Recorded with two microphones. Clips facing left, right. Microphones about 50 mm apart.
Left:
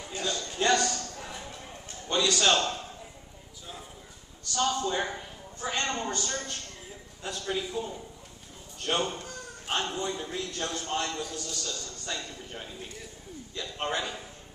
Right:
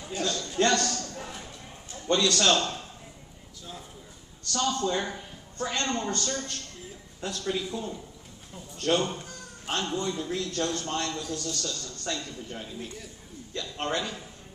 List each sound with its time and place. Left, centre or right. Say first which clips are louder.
0.1 s a man's voice: right 3 dB; centre
1.1 s a sound: right 1 dB; centre
2.0 s speech: right 2 dB; centre
4.6 s speech: even; centre